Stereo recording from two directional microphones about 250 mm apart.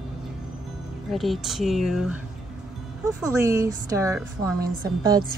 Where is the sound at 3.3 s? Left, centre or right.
Centre.